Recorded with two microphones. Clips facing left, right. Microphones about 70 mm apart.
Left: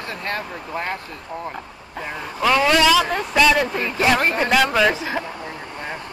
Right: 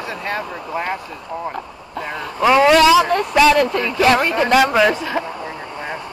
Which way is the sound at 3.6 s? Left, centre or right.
Right.